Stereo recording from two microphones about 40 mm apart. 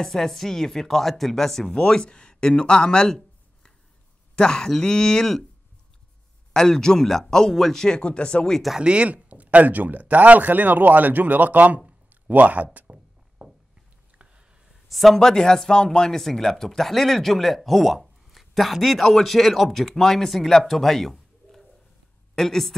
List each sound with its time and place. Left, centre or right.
0.0 s speech: centre
4.4 s speech: centre
6.5 s speech: centre
8.0 s speech: left
8.7 s a man's voice: right
12.7 s a sound: right
14.7 s a sound: centre
15.1 s speech: centre
16.2 s a man's voice: centre